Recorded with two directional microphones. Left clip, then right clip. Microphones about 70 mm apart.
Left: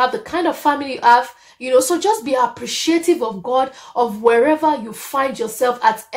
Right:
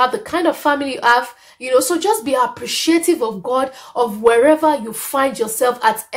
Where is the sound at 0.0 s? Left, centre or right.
Right.